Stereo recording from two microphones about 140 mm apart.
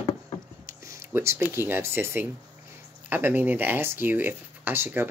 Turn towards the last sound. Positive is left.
turn(degrees=-15)  # may be behind; listen again after turning